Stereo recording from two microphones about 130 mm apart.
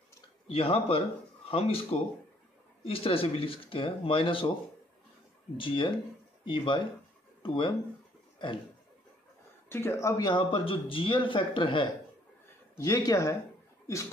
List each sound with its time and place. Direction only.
0.5 s speech: 45° left (ahead or behind)
5.6 s a man's voice: 40° left (ahead or behind)
9.7 s speech: 20° left (ahead or behind)
10.2 s a man's voice: 40° left (ahead or behind)
12.7 s speech: 25° left (ahead or behind)